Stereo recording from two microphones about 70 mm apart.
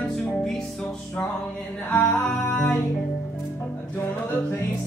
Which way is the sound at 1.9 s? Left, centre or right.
Left.